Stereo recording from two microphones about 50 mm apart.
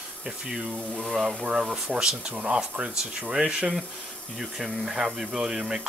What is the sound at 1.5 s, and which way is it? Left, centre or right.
Speech, right.